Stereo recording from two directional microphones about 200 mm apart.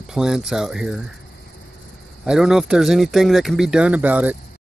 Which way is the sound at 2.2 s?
5° right (ahead or behind).